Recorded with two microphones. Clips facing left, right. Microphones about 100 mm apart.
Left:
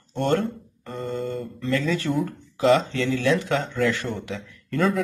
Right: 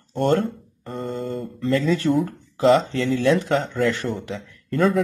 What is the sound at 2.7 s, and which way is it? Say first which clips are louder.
Speech: right 2 dB; centre (ahead or behind).